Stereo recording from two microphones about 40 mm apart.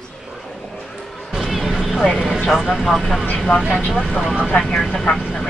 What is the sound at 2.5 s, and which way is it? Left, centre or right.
Speech, centre.